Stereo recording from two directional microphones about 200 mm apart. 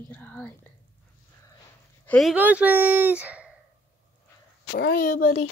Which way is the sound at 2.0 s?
5° left (ahead or behind).